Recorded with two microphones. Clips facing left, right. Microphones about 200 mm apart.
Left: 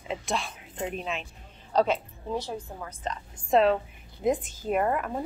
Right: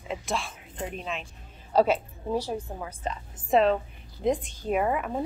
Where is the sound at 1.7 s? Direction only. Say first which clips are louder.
Right 2 dB; 10° right (ahead or behind).